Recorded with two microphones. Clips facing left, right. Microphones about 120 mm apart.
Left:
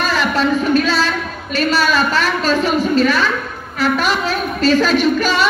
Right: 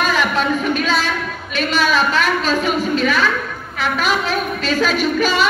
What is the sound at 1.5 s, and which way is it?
A woman's voice, 40° left (ahead or behind).